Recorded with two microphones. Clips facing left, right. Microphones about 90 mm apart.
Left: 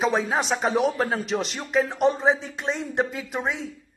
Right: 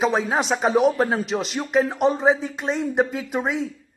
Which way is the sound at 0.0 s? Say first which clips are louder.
Right 2 dB; centre (ahead or behind).